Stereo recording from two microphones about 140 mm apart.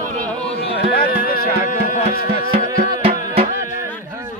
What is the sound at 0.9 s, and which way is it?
Music, 90° left.